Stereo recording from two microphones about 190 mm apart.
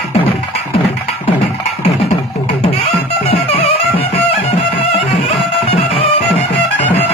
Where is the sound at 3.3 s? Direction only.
30° left (ahead or behind).